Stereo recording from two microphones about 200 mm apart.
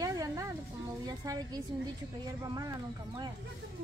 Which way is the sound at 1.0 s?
20° right (ahead or behind).